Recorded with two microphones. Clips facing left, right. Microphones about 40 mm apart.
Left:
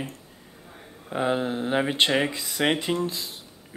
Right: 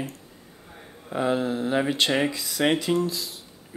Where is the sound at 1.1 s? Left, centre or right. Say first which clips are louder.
Right 1 dB; left.